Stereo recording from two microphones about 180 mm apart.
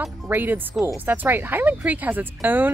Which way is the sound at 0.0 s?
10° right (ahead or behind).